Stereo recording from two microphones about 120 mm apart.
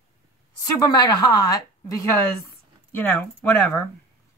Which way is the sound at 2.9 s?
20° left (ahead or behind).